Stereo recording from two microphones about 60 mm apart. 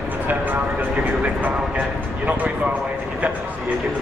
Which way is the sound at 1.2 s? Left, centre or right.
Right.